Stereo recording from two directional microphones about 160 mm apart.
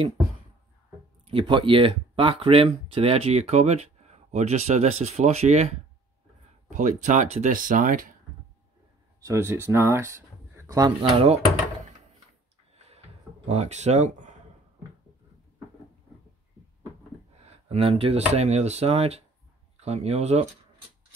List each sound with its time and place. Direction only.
1.2 s speech: 30° right (ahead or behind)
6.7 s speech: 50° right (ahead or behind)
9.2 s speech: 15° right (ahead or behind)
11.0 s speech: 40° right (ahead or behind)
12.7 s drawer open or close: 40° right (ahead or behind)
13.5 s speech: 45° right (ahead or behind)
17.6 s speech: 40° right (ahead or behind)